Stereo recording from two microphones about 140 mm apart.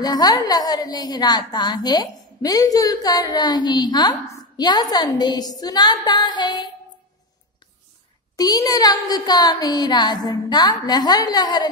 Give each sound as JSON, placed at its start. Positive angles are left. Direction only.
{"t": 0.0, "sound": "a woman's voice", "side_deg": 30}
{"t": 8.4, "sound": "a woman's voice", "side_deg": 30}